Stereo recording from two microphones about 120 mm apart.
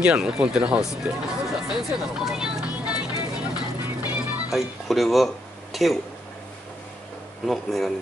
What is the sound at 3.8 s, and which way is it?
Music, 15° right (ahead or behind).